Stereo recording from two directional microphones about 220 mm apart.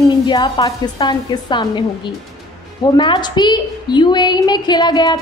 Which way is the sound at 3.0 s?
20° left (ahead or behind).